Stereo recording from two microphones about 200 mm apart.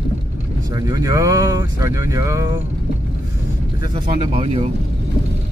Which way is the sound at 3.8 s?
25° right (ahead or behind).